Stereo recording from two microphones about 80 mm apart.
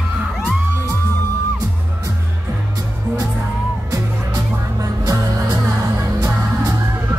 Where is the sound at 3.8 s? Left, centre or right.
Right.